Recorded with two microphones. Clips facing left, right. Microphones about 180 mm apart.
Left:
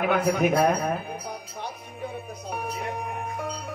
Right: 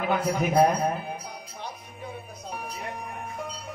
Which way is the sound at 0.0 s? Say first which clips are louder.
Left 3 dB; 60° left (ahead or behind).